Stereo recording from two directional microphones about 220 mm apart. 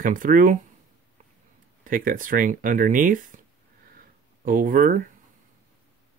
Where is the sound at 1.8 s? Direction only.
40° right (ahead or behind).